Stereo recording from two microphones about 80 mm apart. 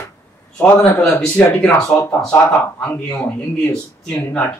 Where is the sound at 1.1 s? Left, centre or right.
Centre.